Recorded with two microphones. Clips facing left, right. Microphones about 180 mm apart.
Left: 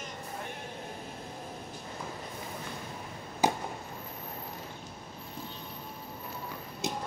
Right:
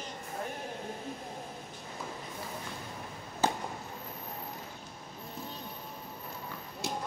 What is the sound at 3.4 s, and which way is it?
Fireworks, 10° left (ahead or behind).